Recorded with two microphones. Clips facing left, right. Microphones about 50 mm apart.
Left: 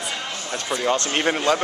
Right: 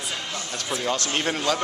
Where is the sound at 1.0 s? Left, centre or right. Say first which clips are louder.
Left 4 dB; left.